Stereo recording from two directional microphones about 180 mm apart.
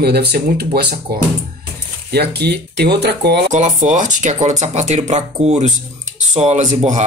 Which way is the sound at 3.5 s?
40° right (ahead or behind).